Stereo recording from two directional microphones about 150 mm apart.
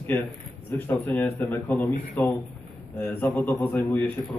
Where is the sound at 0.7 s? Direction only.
15° left (ahead or behind).